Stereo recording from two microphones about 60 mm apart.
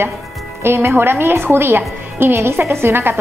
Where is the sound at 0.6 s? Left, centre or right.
Right.